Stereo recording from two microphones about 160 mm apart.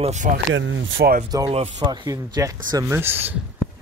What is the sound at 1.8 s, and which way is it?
Speech, 25° right (ahead or behind).